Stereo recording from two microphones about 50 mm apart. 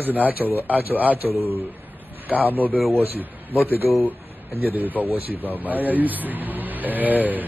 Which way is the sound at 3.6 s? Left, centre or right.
Right.